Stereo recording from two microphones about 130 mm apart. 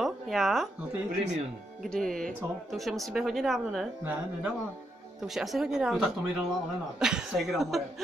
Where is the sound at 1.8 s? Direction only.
5° left (ahead or behind).